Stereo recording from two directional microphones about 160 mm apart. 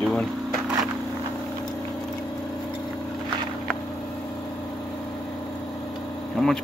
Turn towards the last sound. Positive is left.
turn(degrees=5)  # may be behind; listen again after turning